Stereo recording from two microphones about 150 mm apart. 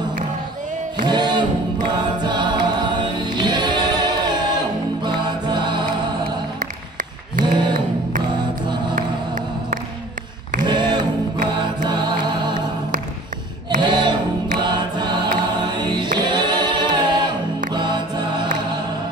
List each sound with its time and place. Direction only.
1.0 s music: 30° right (ahead or behind)
2.2 s choir: 30° right (ahead or behind)
6.6 s a sound: 60° right (ahead or behind)
7.5 s a sound: 30° right (ahead or behind)
10.6 s music: 30° right (ahead or behind)
13.7 s music: 30° right (ahead or behind)
14.6 s choir: 30° right (ahead or behind)
15.6 s a capella: 30° right (ahead or behind)
17.7 s music: 30° right (ahead or behind)